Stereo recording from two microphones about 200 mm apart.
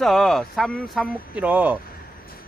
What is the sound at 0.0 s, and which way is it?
Speech, centre (ahead or behind).